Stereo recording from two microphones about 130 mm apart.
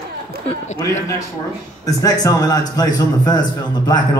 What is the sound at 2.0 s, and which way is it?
A man's voice, 25° left (ahead or behind).